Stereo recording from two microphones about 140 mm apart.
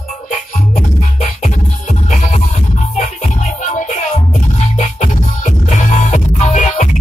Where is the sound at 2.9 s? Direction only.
60° left (ahead or behind).